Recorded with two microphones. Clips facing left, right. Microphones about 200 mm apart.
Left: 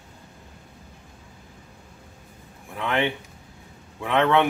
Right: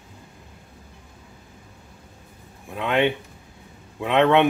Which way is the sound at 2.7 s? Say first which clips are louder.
Right 4 dB; 20° right (ahead or behind).